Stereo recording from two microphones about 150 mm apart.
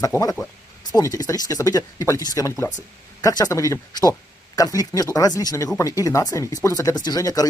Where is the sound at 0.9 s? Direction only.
25° left (ahead or behind).